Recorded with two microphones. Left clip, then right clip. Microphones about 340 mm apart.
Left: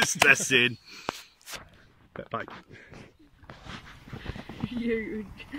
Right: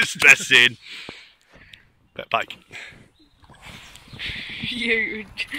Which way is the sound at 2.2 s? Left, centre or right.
Right.